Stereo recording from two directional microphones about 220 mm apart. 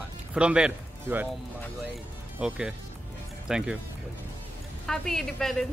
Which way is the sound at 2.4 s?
5° right (ahead or behind).